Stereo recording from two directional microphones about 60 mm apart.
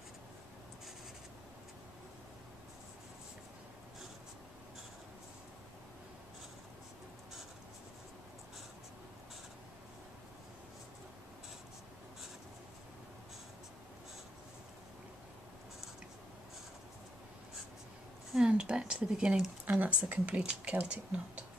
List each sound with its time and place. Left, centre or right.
18.5 s speech: centre
19.6 s speech: right